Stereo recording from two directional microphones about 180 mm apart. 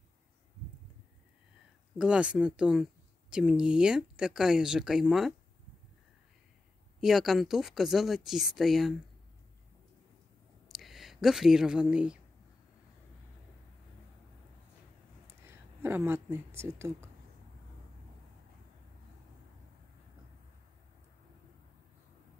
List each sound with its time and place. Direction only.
2.0 s a woman's voice: 5° right (ahead or behind)
7.0 s a woman's voice: centre (ahead or behind)
10.7 s speech: centre (ahead or behind)
15.2 s speech: 15° right (ahead or behind)